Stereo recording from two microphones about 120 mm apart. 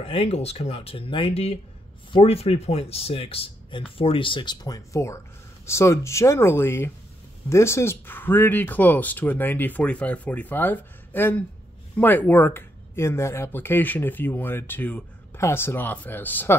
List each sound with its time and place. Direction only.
0.0 s speech: 50° left (ahead or behind); by 16.5 s 15° left (ahead or behind)